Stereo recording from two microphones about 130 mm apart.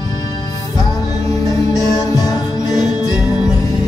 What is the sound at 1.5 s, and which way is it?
Music, 30° left (ahead or behind).